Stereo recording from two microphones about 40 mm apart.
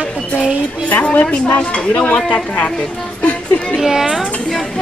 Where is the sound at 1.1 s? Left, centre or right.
Left.